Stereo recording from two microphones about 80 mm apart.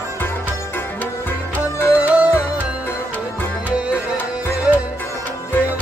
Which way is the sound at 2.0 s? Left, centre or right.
Centre.